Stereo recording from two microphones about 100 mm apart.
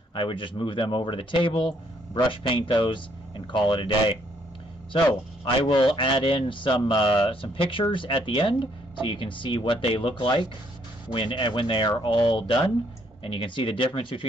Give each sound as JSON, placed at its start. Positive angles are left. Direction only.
{"t": 0.1, "sound": "speech", "side_deg": 55}